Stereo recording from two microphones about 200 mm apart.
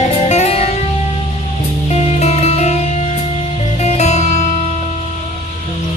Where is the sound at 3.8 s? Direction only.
35° left (ahead or behind).